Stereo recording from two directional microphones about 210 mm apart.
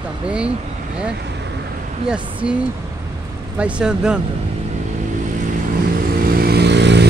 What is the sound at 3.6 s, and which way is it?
Speech, 5° right (ahead or behind).